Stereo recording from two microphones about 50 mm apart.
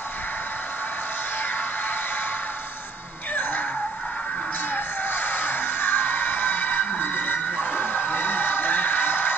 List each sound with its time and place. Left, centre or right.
4.7 s music: left